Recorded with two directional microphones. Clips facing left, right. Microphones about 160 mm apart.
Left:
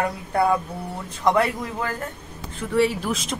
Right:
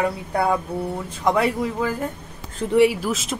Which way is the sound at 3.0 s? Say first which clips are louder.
Right 1 dB; 5° right (ahead or behind).